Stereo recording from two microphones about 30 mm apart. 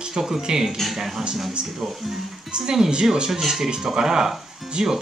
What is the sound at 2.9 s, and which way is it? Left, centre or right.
Speech, right.